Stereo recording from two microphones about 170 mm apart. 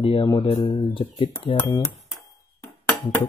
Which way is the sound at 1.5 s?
15° left (ahead or behind).